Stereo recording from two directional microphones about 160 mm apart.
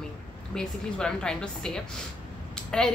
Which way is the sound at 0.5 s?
5° left (ahead or behind).